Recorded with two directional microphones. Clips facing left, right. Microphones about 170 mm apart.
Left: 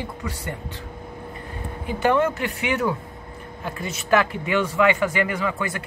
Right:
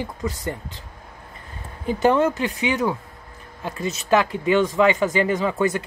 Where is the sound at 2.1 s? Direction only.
20° right (ahead or behind).